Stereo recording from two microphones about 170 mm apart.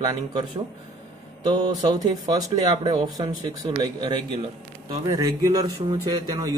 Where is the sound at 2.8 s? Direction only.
35° right (ahead or behind).